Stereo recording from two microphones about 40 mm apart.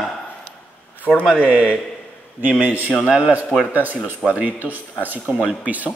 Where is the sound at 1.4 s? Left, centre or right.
Right.